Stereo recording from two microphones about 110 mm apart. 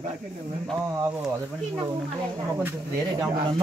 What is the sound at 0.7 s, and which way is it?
Speech, 25° right (ahead or behind).